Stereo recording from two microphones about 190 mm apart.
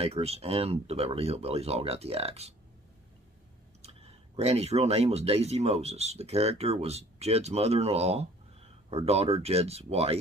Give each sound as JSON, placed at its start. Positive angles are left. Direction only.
{"t": 0.0, "sound": "speech", "side_deg": -30}
{"t": 3.8, "sound": "speech", "side_deg": -35}